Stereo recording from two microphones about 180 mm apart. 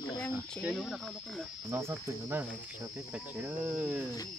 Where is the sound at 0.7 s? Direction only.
Centre (ahead or behind).